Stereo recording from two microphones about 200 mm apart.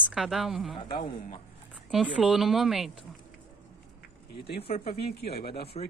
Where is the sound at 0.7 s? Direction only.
25° left (ahead or behind).